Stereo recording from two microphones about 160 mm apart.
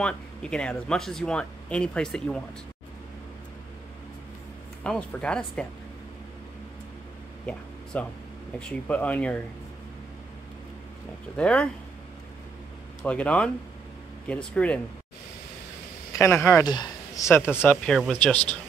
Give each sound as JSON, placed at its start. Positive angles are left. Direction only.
{"t": 0.0, "sound": "speech", "side_deg": 5}
{"t": 4.8, "sound": "speech", "side_deg": 5}
{"t": 7.4, "sound": "speech", "side_deg": 10}
{"t": 11.3, "sound": "speech", "side_deg": 5}
{"t": 13.0, "sound": "speech", "side_deg": 10}
{"t": 16.2, "sound": "speech", "side_deg": 15}
{"t": 17.6, "sound": "speech", "side_deg": 5}